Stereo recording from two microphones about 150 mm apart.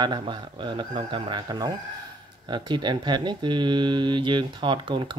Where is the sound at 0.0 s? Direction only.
30° right (ahead or behind).